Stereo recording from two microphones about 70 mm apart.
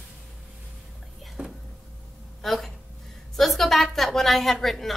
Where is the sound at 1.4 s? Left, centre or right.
Centre.